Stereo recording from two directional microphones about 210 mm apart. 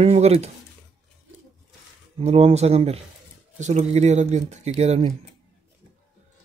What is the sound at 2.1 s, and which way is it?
Speech, 30° right (ahead or behind).